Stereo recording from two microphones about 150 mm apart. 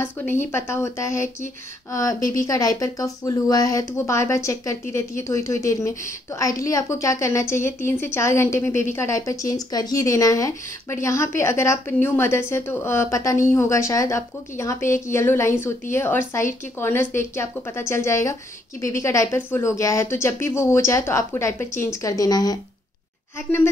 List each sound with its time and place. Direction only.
0.0 s a woman's voice: 15° left (ahead or behind)